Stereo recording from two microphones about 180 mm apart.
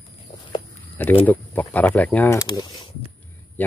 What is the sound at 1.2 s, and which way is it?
Speech, 10° left (ahead or behind).